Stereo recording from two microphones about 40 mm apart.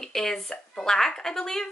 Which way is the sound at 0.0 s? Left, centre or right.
Centre.